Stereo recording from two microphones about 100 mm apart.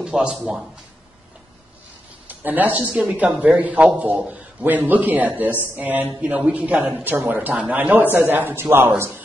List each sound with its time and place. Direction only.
0.0 s a man's voice: 5° right (ahead or behind)
2.2 s a man's voice: 20° right (ahead or behind)